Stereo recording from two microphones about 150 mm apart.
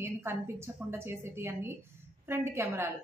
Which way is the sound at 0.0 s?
15° right (ahead or behind).